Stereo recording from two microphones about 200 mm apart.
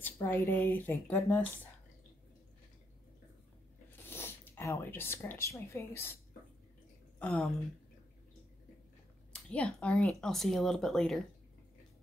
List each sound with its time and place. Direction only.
0.0 s speech: 10° left (ahead or behind)
4.1 s speech: 10° left (ahead or behind)
7.2 s a woman's voice: 5° left (ahead or behind)
9.3 s speech: 5° left (ahead or behind)